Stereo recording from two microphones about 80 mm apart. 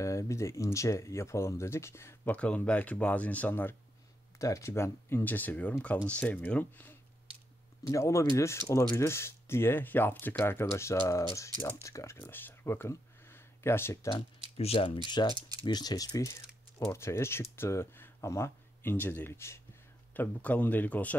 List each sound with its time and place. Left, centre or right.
0.0 s speech: left
2.2 s speech: centre
4.4 s speech: left
8.0 s speech: left
15.0 s speech: left
15.6 s speech: left
16.9 s speech: left
20.2 s speech: left